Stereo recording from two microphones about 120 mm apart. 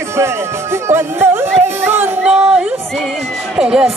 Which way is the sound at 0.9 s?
20° right (ahead or behind).